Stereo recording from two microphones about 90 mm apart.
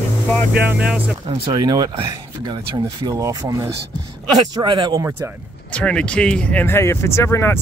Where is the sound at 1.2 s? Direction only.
90° right.